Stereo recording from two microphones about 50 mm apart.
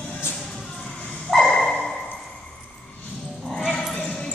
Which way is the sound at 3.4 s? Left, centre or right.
Centre.